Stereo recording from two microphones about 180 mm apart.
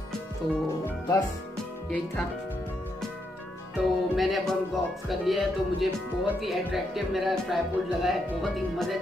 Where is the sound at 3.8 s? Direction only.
Centre (ahead or behind).